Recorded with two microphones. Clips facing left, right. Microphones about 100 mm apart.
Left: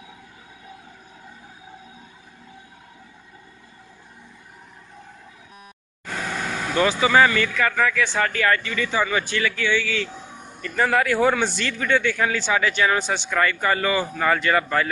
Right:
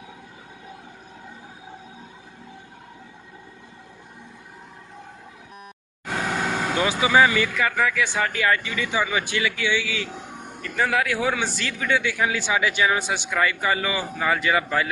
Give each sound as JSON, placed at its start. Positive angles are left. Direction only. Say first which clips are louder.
{"t": 6.4, "sound": "vehicle", "louder": "right 3 dB", "side_deg": -40}
{"t": 6.7, "sound": "a man's voice", "louder": "left 3 dB", "side_deg": -15}
{"t": 10.8, "sound": "a man's voice", "louder": "left 4 dB", "side_deg": 0}